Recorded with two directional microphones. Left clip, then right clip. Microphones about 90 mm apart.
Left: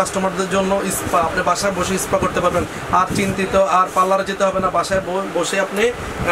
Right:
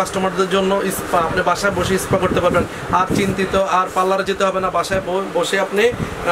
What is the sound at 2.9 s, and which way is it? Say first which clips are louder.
Speech: even; 20° right (ahead or behind).